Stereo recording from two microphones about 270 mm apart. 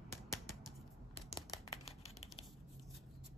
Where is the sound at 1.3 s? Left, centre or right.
Centre.